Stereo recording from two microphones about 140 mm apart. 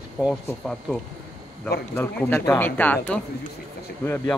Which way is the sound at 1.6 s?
10° left (ahead or behind).